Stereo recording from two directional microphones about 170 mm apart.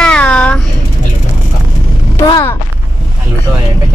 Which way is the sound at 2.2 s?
20° left (ahead or behind).